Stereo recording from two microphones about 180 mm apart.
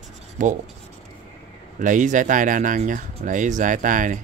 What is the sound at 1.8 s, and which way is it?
Speech, 45° right (ahead or behind).